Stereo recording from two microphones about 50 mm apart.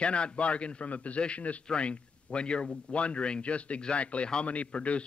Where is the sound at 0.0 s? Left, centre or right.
Left.